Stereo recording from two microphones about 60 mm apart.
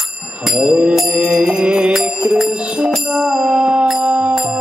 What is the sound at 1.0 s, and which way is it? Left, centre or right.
Music, centre.